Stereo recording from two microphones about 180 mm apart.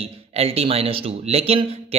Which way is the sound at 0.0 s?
35° right (ahead or behind).